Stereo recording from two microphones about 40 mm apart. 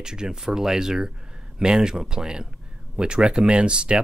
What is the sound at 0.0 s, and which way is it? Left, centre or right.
Speech, centre.